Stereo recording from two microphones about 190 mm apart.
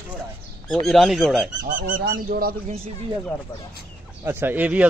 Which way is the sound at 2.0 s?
55° right (ahead or behind).